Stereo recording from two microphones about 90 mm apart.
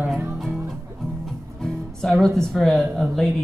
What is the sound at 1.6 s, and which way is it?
Speech, 5° left (ahead or behind).